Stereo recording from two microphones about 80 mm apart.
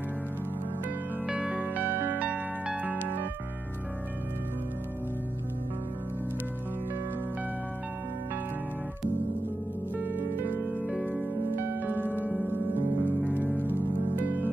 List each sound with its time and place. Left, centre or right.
1.2 s music: centre
10.0 s music: right
11.5 s music: right